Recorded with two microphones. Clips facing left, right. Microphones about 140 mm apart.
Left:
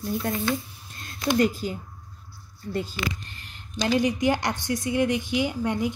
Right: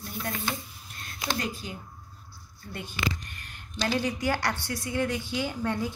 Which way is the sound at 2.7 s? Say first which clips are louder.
Left 4 dB; 30° left (ahead or behind).